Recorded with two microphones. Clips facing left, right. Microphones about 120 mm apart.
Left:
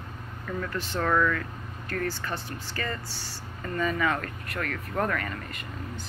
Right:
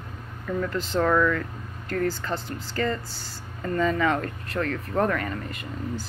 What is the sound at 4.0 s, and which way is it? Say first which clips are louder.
Speech: right 4 dB; 30° right (ahead or behind).